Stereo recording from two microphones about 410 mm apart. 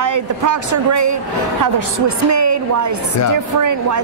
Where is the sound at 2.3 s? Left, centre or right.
Right.